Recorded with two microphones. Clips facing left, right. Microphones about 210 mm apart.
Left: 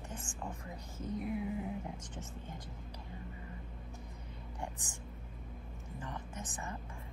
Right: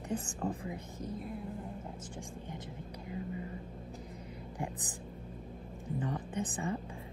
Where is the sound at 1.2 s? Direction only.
5° left (ahead or behind).